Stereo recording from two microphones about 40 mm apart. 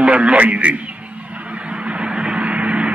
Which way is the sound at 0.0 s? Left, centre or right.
Right.